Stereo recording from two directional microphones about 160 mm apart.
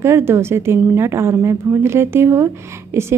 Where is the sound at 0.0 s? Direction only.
15° right (ahead or behind).